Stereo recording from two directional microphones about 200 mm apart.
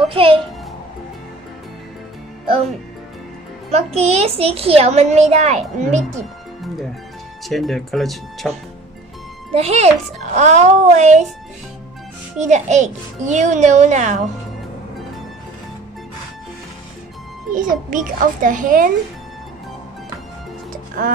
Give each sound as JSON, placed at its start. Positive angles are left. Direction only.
{"t": 0.1, "sound": "a child's voice", "side_deg": -25}
{"t": 3.7, "sound": "a child's voice", "side_deg": -30}
{"t": 7.4, "sound": "speech", "side_deg": 0}
{"t": 9.5, "sound": "a child's voice", "side_deg": -30}
{"t": 12.4, "sound": "a child's voice", "side_deg": -35}
{"t": 17.6, "sound": "a child's voice", "side_deg": -40}